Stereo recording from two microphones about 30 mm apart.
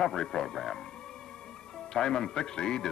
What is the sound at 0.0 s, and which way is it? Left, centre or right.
Speech, left.